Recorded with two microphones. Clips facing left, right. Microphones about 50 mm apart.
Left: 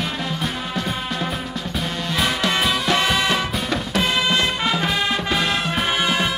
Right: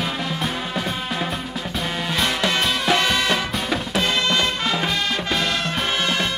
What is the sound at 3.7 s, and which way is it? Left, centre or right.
Music, centre.